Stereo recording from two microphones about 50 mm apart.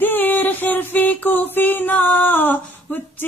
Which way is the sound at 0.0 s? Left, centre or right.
Left.